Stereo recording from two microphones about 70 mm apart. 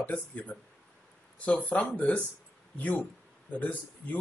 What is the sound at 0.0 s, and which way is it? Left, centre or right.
Speech, left.